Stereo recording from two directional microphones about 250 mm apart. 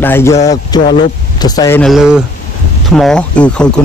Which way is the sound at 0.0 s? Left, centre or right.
Centre.